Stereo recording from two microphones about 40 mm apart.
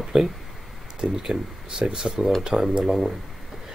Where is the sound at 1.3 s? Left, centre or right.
Right.